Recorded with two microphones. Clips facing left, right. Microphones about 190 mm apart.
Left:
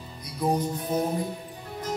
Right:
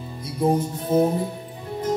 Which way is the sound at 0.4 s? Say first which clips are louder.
Right 4 dB; 25° right (ahead or behind).